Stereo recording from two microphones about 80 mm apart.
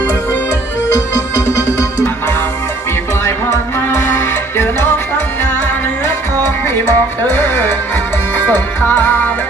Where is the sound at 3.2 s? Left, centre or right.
Left.